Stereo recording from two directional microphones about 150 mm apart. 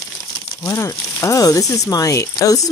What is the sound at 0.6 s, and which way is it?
Speech, 20° left (ahead or behind).